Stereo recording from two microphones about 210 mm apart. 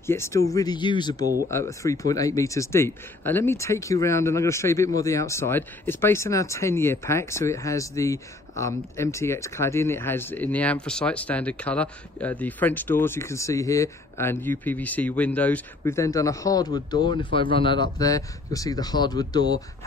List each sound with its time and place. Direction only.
0.0 s speech: 10° left (ahead or behind)